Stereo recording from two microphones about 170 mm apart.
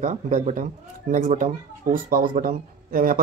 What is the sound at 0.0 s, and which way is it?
Speech, 45° right (ahead or behind).